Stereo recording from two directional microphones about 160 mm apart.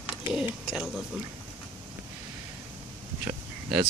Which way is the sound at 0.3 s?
5° right (ahead or behind).